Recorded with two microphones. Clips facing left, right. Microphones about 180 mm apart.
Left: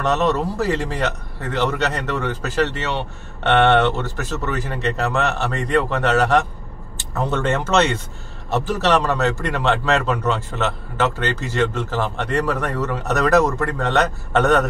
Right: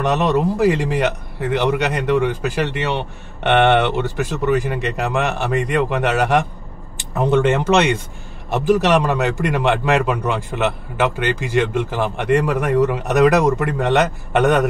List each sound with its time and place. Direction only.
0.0 s speech: 15° right (ahead or behind)